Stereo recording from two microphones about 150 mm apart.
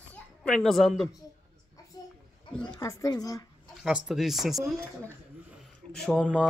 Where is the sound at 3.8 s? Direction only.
Centre (ahead or behind).